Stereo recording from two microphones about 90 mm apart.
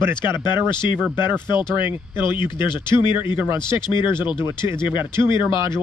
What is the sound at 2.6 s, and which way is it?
Speech, 60° left (ahead or behind).